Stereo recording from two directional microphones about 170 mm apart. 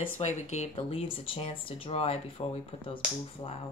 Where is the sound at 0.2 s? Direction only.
45° left (ahead or behind).